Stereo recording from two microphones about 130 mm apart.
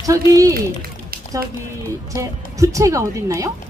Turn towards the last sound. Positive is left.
turn(degrees=-25)  # may be behind; listen again after turning